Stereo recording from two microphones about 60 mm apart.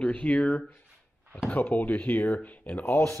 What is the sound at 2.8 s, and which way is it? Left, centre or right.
Speech, left.